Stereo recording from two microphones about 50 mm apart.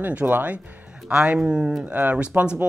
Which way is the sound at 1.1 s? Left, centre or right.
Centre.